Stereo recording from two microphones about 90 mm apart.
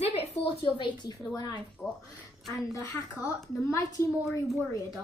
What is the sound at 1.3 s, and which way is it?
Speech, 50° left (ahead or behind).